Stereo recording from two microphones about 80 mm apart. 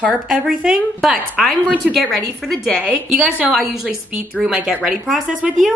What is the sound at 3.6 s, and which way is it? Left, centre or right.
A woman's voice, centre.